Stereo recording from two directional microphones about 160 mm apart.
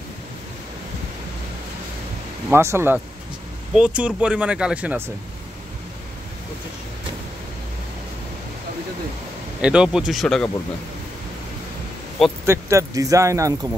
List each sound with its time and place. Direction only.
2.5 s speech: 15° right (ahead or behind)
9.6 s speech: 5° right (ahead or behind)
12.4 s speech: 20° right (ahead or behind)